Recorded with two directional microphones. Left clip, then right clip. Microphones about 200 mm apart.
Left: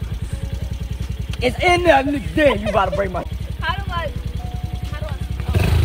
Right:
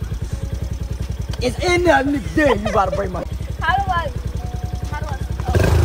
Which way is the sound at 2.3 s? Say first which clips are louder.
Left 1 dB; centre (ahead or behind).